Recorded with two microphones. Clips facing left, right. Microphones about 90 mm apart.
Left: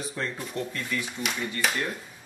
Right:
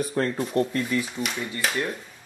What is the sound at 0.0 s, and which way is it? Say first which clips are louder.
Speech: right 8 dB; 50° right (ahead or behind).